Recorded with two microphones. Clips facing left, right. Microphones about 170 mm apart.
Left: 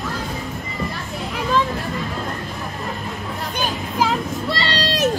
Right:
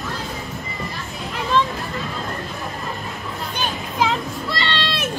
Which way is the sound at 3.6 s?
5° left (ahead or behind).